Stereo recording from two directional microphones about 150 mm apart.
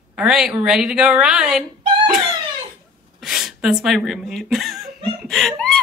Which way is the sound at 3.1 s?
Centre (ahead or behind).